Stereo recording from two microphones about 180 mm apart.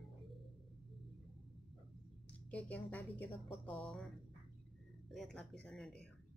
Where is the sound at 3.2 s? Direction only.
30° left (ahead or behind).